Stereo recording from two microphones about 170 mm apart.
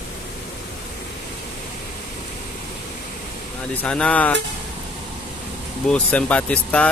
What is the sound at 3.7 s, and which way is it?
Speech, 5° left (ahead or behind).